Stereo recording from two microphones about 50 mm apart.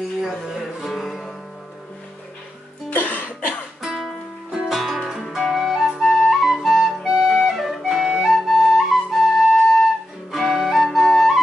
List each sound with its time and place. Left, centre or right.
0.6 s music: centre
2.9 s music: left
3.8 s music: centre
5.3 s flute: centre
7.1 s music: centre
7.5 s music: centre
7.9 s flute: centre